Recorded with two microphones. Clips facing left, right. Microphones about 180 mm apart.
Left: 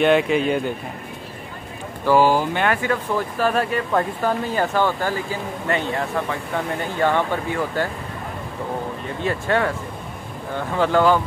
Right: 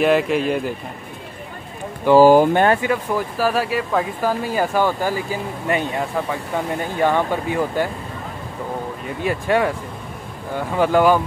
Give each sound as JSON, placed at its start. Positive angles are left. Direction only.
{"t": 0.0, "sound": "speech", "side_deg": 0}
{"t": 2.1, "sound": "speech", "side_deg": -45}
{"t": 2.8, "sound": "speech", "side_deg": -10}
{"t": 9.2, "sound": "speech", "side_deg": -15}